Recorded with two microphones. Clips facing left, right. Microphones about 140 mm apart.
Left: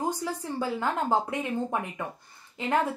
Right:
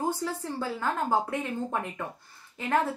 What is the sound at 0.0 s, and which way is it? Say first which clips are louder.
A woman's voice: even; 15° left (ahead or behind).